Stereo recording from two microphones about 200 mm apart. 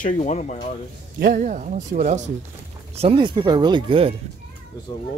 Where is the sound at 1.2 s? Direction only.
40° right (ahead or behind).